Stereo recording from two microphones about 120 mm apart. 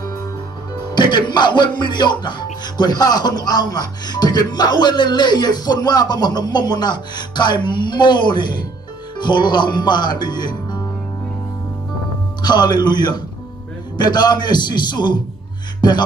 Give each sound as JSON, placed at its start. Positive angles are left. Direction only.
{"t": 0.9, "sound": "speech", "side_deg": 40}
{"t": 12.4, "sound": "speech", "side_deg": 35}